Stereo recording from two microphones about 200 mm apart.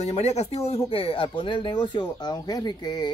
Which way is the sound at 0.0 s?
35° left (ahead or behind).